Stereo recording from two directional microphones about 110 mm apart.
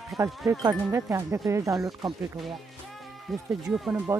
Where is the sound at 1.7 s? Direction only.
Centre (ahead or behind).